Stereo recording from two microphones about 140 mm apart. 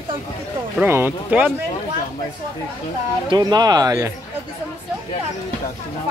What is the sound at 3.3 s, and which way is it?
Speech, 30° right (ahead or behind).